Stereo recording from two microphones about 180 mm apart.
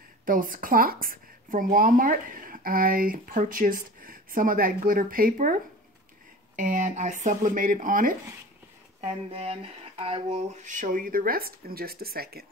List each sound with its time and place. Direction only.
0.2 s a woman's voice: 50° right (ahead or behind)
9.3 s a woman's voice: 35° right (ahead or behind); by 12.4 s 55° right (ahead or behind)